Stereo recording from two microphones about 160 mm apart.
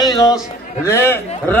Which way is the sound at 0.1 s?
25° left (ahead or behind).